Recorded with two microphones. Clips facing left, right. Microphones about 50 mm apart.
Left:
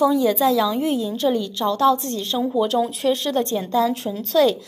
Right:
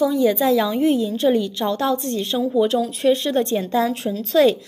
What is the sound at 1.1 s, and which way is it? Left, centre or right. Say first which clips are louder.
A woman's voice: right 3 dB; centre.